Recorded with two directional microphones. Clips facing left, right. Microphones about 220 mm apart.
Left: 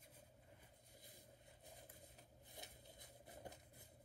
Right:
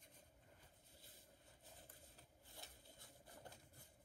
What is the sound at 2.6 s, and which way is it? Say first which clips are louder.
Patter: left 3 dB; 20° left (ahead or behind).